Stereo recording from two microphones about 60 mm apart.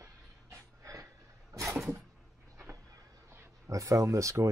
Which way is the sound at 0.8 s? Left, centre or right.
Right.